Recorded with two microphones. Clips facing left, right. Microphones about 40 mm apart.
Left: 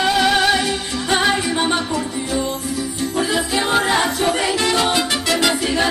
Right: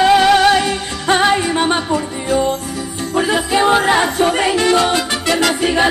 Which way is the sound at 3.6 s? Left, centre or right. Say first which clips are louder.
Right 5 dB; centre.